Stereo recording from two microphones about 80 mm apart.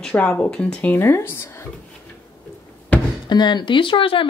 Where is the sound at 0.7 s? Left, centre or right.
Left.